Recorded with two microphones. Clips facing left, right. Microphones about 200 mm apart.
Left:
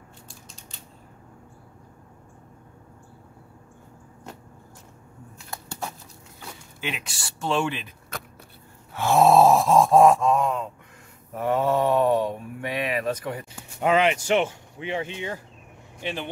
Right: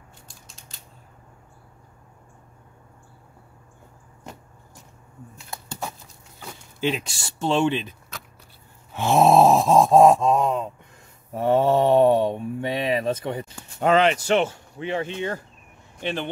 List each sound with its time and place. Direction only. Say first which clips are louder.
0.3 s scissors: left 3 dB; centre (ahead or behind)
6.8 s speech: right 9 dB; 30° right (ahead or behind)
8.9 s speech: right 1 dB; 20° right (ahead or behind)
13.5 s speech: right 2 dB; 10° left (ahead or behind)